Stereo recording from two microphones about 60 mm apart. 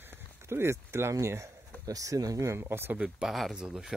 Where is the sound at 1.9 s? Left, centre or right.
Right.